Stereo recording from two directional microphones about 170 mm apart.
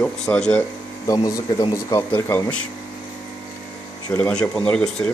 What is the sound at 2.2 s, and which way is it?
Speech, 10° left (ahead or behind).